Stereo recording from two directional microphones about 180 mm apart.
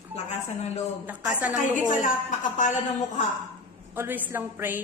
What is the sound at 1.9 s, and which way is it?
Speech, 45° left (ahead or behind).